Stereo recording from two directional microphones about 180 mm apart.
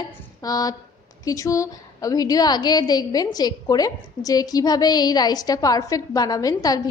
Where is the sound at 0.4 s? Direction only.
20° left (ahead or behind).